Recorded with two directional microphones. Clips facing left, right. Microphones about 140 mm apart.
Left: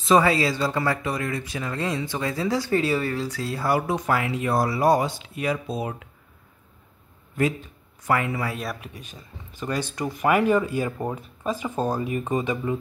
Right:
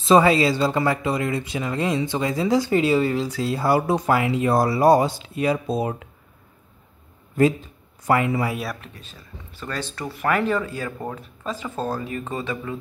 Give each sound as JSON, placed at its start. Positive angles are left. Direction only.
{"t": 0.0, "sound": "speech", "side_deg": -25}
{"t": 8.1, "sound": "speech", "side_deg": -25}
{"t": 8.8, "sound": "speech", "side_deg": 15}